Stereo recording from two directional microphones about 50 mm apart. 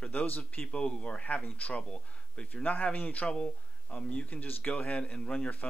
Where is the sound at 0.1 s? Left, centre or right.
Left.